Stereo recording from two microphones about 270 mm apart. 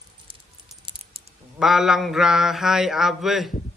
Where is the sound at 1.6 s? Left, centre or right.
Centre.